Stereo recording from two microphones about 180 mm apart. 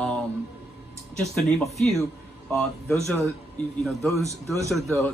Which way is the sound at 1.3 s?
Centre (ahead or behind).